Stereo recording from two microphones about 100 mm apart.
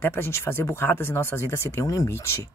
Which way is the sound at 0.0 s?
25° left (ahead or behind).